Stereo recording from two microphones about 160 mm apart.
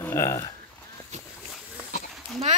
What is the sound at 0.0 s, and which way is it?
Speech, 15° left (ahead or behind).